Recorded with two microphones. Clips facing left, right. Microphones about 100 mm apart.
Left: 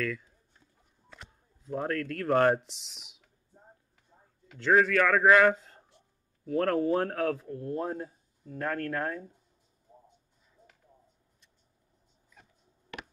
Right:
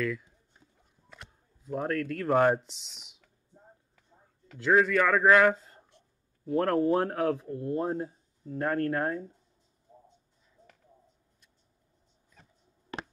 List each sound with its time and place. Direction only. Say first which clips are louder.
0.0 s a man's voice: right 2 dB; 5° right (ahead or behind)
4.6 s a man's voice: even; 5° right (ahead or behind); by 9.2 s 20° right (ahead or behind)